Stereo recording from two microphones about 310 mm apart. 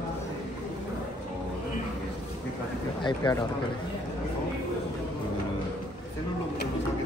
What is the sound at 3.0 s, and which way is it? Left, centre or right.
Speech, centre.